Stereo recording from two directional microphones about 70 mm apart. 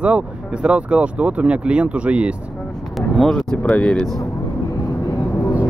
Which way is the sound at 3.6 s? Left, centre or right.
Centre.